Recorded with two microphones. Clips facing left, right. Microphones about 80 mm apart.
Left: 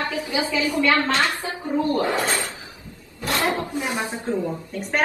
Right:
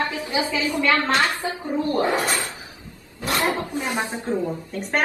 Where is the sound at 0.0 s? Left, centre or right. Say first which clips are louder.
Even; right.